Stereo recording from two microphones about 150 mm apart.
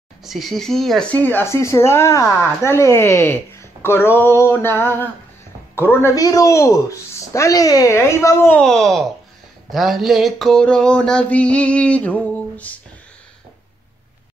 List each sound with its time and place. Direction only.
0.2 s speech: centre (ahead or behind)